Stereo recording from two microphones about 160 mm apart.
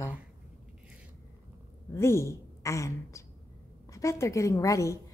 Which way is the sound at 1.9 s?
15° left (ahead or behind).